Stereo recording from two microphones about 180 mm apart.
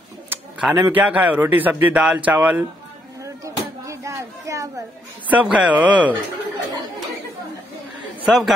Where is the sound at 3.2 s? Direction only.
15° right (ahead or behind).